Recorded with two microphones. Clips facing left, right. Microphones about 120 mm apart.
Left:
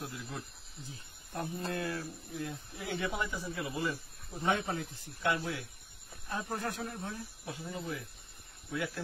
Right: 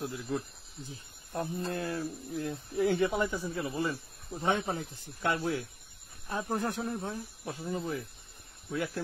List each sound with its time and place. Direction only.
0.8 s speech: 30° right (ahead or behind)
6.2 s speech: 25° right (ahead or behind)